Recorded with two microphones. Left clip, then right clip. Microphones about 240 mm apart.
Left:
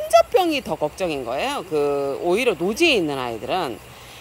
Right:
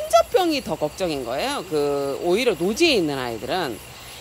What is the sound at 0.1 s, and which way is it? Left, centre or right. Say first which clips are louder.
Speech: left 2 dB; centre.